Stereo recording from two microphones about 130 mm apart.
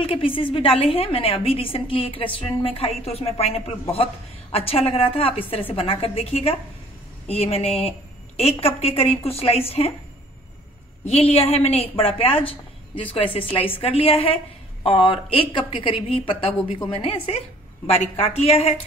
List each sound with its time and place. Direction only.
0.0 s a woman's voice: 45° left (ahead or behind)
11.1 s a woman's voice: 50° left (ahead or behind)